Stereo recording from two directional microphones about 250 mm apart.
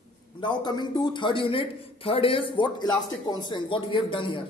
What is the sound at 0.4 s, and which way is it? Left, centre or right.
A woman's voice, centre.